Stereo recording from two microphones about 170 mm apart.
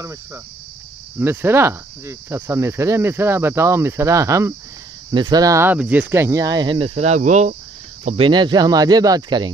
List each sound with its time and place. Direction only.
0.0 s speech: 15° right (ahead or behind)
7.0 s speech: 45° right (ahead or behind)
8.2 s speech: 25° right (ahead or behind)